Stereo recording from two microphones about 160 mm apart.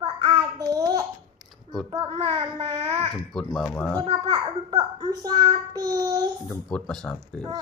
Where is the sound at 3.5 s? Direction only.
5° left (ahead or behind).